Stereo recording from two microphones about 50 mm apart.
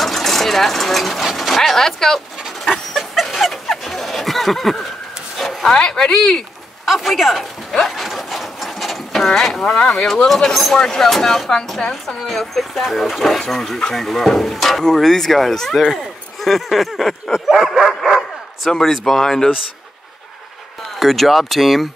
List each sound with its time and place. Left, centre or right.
0.0 s speech: centre
2.9 s dog: centre
5.4 s bow-wow: centre
5.8 s speech: centre
6.9 s speech: centre
7.7 s a sound: centre
9.8 s speech: centre
10.5 s speech: centre
21.0 s speech: centre